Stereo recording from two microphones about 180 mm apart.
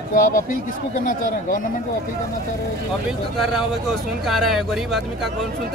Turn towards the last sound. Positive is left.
turn(degrees=0)  # may be behind; listen again after turning